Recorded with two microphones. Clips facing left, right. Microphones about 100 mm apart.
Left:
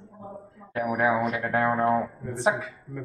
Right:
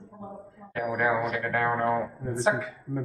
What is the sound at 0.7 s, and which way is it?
Speech, 20° left (ahead or behind).